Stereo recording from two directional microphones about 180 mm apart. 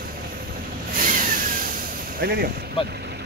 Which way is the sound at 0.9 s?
50° right (ahead or behind).